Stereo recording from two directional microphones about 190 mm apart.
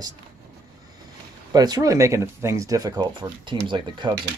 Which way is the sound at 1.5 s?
20° right (ahead or behind).